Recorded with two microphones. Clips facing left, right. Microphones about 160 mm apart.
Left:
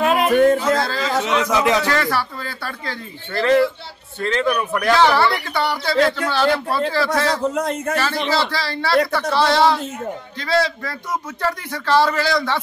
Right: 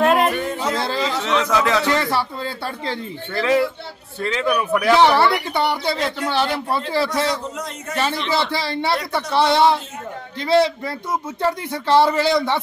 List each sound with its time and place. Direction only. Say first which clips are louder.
0.0 s a sound: right 2 dB; centre (ahead or behind)
0.7 s a sound: left 2 dB; 20° right (ahead or behind)
1.2 s a man's voice: left 1 dB; 10° left (ahead or behind)
1.9 s speech: right 1 dB; 20° right (ahead or behind)
3.3 s speech: left 3 dB; 5° right (ahead or behind)
4.9 s speech: right 1 dB; 20° right (ahead or behind)
7.4 s speech: left 9 dB; 55° left (ahead or behind)
7.9 s speech: right 2 dB; 20° right (ahead or behind)